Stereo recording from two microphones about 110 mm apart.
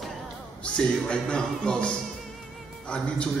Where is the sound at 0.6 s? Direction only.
10° left (ahead or behind).